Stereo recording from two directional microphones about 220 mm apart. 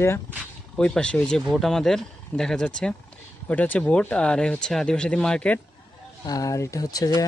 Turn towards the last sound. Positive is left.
turn(degrees=15)  # may be behind; listen again after turning